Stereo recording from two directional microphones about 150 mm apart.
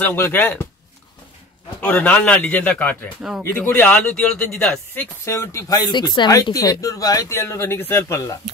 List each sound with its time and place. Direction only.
0.0 s speech: 15° left (ahead or behind)
1.8 s speech: 10° left (ahead or behind)
3.2 s speech: 5° right (ahead or behind)
3.5 s speech: 10° left (ahead or behind)
5.2 s speech: 20° left (ahead or behind)